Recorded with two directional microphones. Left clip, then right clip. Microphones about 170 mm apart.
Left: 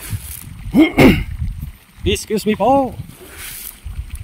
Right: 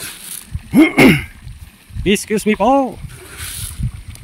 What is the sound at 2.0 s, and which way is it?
Speech, 10° right (ahead or behind).